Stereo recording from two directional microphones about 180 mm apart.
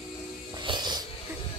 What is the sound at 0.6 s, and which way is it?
Music, 25° right (ahead or behind).